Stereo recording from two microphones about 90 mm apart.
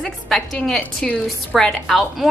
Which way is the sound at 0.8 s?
15° left (ahead or behind).